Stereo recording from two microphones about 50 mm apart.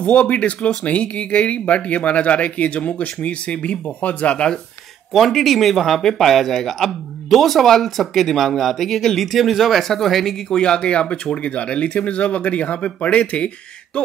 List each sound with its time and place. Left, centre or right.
0.0 s speech: left
5.1 s speech: centre
10.6 s speech: centre